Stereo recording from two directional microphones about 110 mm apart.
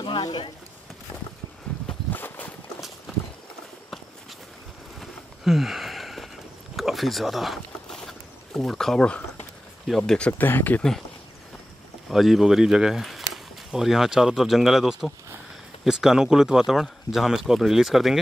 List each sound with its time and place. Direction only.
0.0 s speech: 45° left (ahead or behind)
2.0 s a sound: 15° left (ahead or behind)
3.1 s clip-clop: centre (ahead or behind)
5.4 s a sound: 5° right (ahead or behind)
9.8 s speech: 5° left (ahead or behind)
12.1 s speech: centre (ahead or behind)